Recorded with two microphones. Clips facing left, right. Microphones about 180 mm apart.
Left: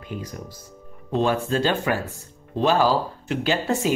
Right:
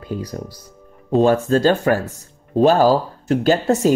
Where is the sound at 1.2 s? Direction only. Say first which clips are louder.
Right 7 dB; 40° right (ahead or behind).